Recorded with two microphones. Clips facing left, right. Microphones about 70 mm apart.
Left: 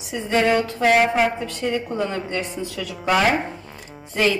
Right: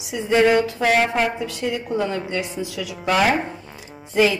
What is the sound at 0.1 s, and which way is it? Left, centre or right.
A woman's voice, centre.